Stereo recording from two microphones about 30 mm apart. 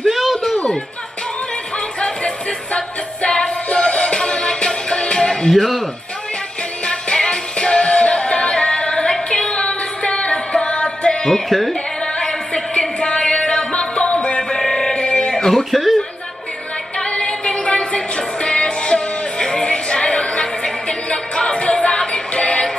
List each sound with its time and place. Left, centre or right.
0.1 s a sound: centre
2.0 s music: left
5.5 s speech: centre
6.9 s music: left
11.1 s music: left
11.4 s music: centre
13.0 s music: left
14.5 s music: left
15.0 s music: left
15.3 s a sound: centre
15.7 s chuckle: centre
17.0 s music: left
19.9 s music: left